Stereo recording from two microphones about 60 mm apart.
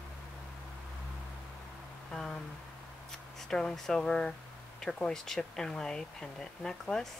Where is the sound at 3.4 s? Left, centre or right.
Centre.